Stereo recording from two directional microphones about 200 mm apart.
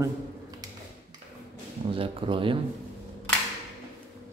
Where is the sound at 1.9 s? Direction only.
25° right (ahead or behind).